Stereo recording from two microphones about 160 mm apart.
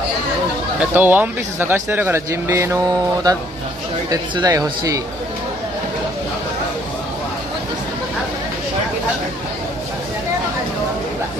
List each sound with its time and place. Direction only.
0.7 s speech: 10° right (ahead or behind)